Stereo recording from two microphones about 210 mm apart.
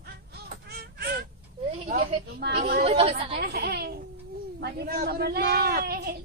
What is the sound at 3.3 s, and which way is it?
Speech, 50° right (ahead or behind).